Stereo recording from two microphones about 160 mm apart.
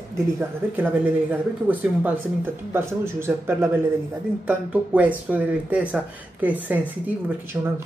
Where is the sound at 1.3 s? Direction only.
10° right (ahead or behind).